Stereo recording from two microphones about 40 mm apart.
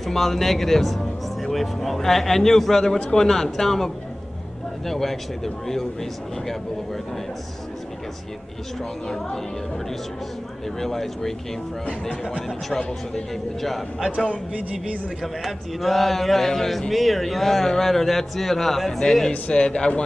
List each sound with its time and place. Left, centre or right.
0.0 s speech: centre
9.0 s speech: centre
10.8 s speech: centre
11.8 s speech: left
12.7 s speech: centre
14.1 s a man's voice: left
15.4 s speech: centre; by 20.0 s left